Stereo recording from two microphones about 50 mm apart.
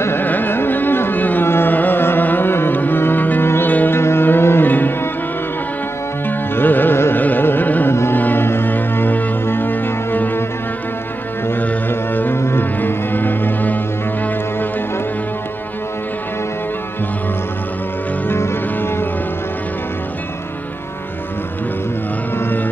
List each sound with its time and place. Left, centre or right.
0.2 s carnatic music: left
1.5 s music: left
4.0 s mantra: left
4.6 s music: left
6.2 s music: left
7.9 s music: left
8.2 s music: left
11.9 s music: left
18.3 s music: left
22.4 s music: left